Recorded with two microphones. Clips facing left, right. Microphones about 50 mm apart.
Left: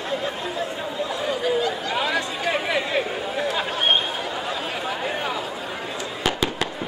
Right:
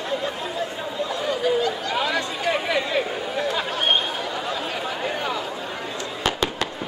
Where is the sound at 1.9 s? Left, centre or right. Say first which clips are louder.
Even; centre.